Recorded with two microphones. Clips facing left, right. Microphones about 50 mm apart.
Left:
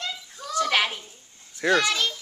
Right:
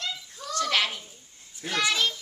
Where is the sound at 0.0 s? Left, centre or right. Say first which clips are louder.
Left 1 dB; centre.